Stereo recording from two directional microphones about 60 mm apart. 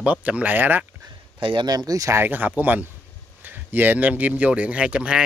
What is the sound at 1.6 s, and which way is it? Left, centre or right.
Speech, right.